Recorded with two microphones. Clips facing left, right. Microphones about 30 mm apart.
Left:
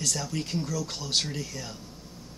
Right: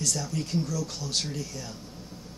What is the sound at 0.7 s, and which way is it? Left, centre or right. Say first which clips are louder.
Speech: left 2 dB; left.